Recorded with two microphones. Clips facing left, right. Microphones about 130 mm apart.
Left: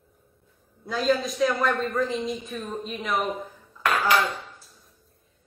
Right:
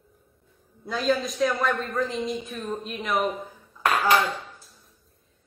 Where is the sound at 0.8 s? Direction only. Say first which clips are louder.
Left 1 dB; centre (ahead or behind).